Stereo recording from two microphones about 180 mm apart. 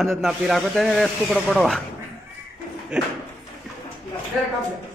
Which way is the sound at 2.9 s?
5° right (ahead or behind).